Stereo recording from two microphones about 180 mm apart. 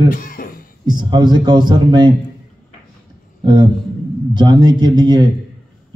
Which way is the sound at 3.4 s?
25° right (ahead or behind).